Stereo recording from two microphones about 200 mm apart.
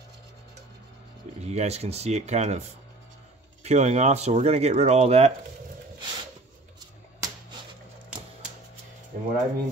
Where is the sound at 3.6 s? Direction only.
35° right (ahead or behind).